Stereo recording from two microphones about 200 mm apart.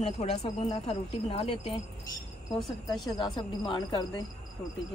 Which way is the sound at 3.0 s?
20° left (ahead or behind).